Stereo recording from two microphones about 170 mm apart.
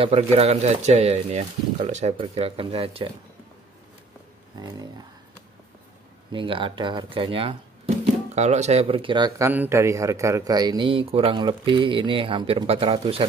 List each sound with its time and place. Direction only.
0.0 s speech: 35° right (ahead or behind)
4.6 s a man's voice: 20° right (ahead or behind)
6.3 s speech: 30° right (ahead or behind)
9.5 s a man's voice: 15° right (ahead or behind); by 13.3 s 30° right (ahead or behind)